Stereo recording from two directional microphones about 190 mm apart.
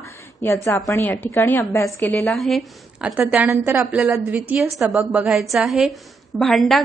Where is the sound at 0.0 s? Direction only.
15° left (ahead or behind).